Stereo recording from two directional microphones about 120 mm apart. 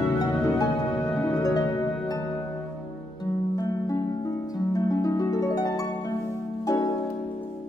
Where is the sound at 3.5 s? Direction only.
30° left (ahead or behind).